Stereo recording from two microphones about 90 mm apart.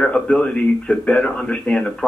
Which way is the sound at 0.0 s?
15° left (ahead or behind).